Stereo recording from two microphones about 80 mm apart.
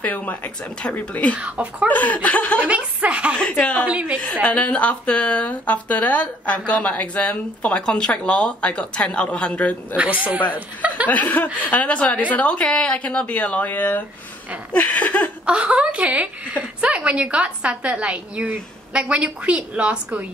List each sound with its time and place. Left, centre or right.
0.0 s speech: left
1.3 s a woman's voice: centre
1.9 s speech: left
2.7 s a woman's voice: centre
3.3 s a woman's voice: centre
3.8 s a woman's voice: centre
4.2 s a woman's voice: centre
9.9 s a woman's voice: centre
11.1 s a woman's voice: left
15.4 s a woman's voice: centre